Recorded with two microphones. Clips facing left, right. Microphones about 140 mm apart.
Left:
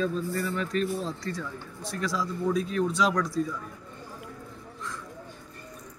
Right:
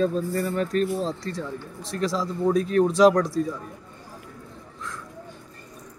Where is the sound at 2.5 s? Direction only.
50° right (ahead or behind); by 3.6 s 35° right (ahead or behind).